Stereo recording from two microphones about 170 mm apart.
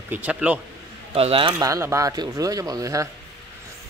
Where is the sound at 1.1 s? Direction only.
30° right (ahead or behind).